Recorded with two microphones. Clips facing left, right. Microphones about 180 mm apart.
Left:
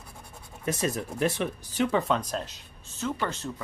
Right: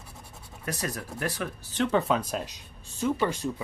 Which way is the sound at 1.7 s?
Centre (ahead or behind).